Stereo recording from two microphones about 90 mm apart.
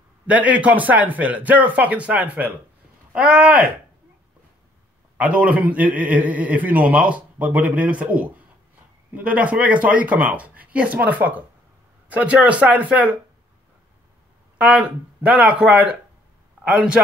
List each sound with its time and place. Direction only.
0.3 s a man's voice: 15° right (ahead or behind)
5.1 s a man's voice: 15° right (ahead or behind)
14.6 s a man's voice: 15° right (ahead or behind)